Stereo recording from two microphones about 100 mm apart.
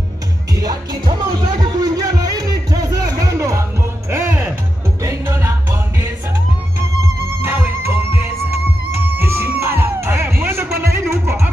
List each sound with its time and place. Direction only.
0.6 s music: 40° right (ahead or behind)